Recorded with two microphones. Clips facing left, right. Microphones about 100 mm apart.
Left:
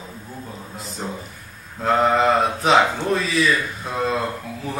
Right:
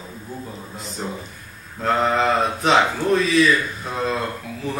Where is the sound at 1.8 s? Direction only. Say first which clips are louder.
Left 2 dB; 5° left (ahead or behind).